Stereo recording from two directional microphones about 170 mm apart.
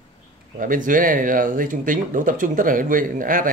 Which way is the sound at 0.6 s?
50° right (ahead or behind).